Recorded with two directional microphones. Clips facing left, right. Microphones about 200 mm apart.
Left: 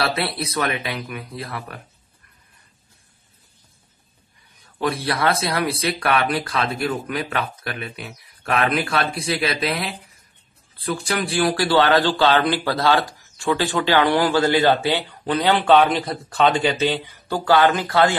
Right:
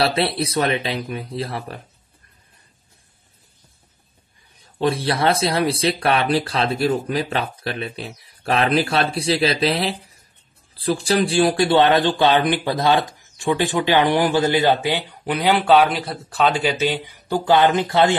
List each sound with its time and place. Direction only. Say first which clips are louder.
0.0 s speech: right 4 dB; 30° right (ahead or behind)
4.7 s speech: right 3 dB; 25° right (ahead or behind)